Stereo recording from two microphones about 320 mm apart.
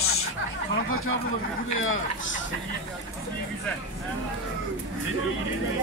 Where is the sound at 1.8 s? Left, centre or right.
Left.